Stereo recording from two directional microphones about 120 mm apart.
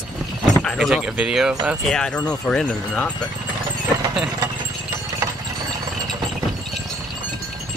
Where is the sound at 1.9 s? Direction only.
5° left (ahead or behind).